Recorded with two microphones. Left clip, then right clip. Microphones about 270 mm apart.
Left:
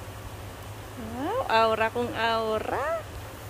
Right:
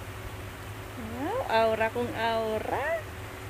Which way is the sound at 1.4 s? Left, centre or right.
Centre.